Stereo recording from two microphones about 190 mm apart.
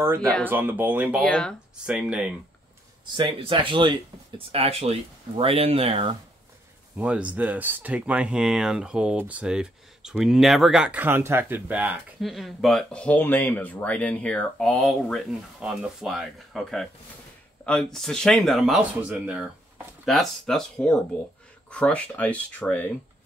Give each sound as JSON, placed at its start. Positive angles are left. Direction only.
{"t": 0.0, "sound": "speech", "side_deg": -15}
{"t": 1.2, "sound": "speech", "side_deg": 5}
{"t": 3.2, "sound": "speech", "side_deg": -25}
{"t": 7.0, "sound": "speech", "side_deg": -5}